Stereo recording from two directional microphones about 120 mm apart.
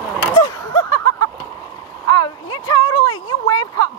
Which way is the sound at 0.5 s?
35° left (ahead or behind).